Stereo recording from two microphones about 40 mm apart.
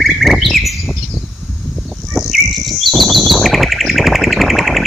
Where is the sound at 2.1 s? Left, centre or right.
Centre.